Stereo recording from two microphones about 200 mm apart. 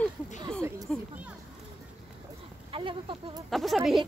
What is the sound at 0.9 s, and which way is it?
Speech, 5° left (ahead or behind).